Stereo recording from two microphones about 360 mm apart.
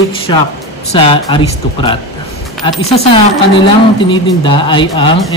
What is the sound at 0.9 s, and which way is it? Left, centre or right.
Speech, centre.